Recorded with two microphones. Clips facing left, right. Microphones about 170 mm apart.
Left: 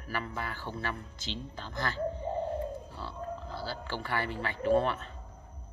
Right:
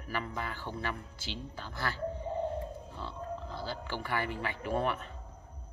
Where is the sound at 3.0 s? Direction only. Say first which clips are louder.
Right 1 dB; 20° right (ahead or behind).